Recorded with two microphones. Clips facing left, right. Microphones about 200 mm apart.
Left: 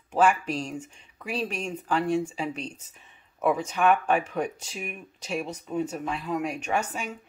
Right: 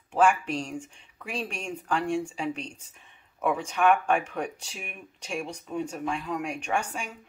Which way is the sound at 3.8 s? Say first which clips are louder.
Even; 5° left (ahead or behind).